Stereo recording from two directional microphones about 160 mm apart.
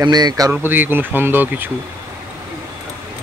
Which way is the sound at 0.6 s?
10° right (ahead or behind).